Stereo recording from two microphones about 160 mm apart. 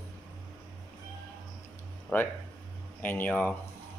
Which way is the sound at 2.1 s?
10° left (ahead or behind).